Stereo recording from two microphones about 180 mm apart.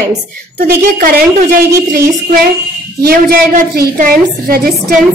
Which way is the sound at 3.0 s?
55° right (ahead or behind).